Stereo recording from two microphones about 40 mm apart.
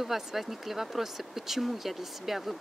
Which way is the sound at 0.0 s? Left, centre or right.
Centre.